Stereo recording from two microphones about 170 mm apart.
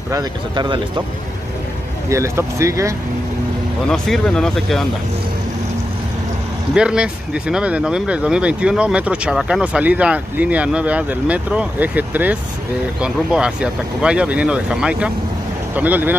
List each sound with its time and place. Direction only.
0.1 s speech: 25° right (ahead or behind)
2.0 s speech: 15° right (ahead or behind)
3.9 s speech: 5° left (ahead or behind)
6.7 s speech: 5° right (ahead or behind)